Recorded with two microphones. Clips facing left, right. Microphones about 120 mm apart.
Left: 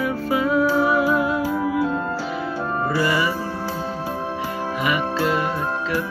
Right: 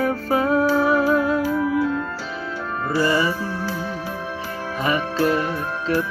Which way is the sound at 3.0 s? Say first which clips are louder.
Right 3 dB; 30° right (ahead or behind).